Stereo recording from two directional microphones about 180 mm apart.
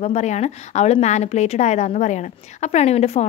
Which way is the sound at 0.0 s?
40° left (ahead or behind).